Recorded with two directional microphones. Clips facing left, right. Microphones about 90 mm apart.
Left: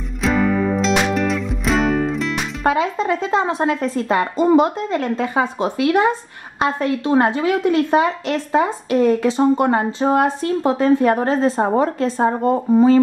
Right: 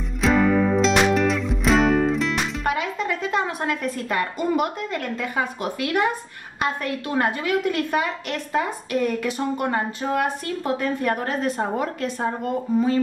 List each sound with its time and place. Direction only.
0.2 s music: centre (ahead or behind)
2.6 s a woman's voice: 30° left (ahead or behind)